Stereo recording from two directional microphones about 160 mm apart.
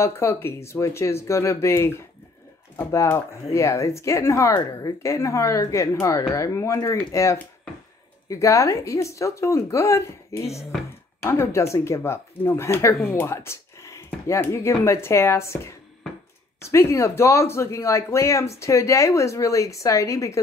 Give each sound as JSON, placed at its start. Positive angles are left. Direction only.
{"t": 0.0, "sound": "a woman's voice", "side_deg": 15}